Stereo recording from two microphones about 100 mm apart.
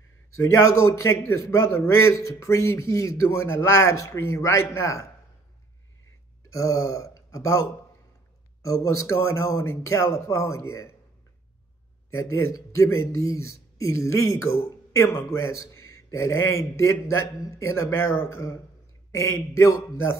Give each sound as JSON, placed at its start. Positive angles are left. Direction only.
{"t": 0.4, "sound": "speech", "side_deg": 30}
{"t": 6.5, "sound": "speech", "side_deg": 30}
{"t": 8.6, "sound": "speech", "side_deg": 30}
{"t": 12.1, "sound": "speech", "side_deg": 30}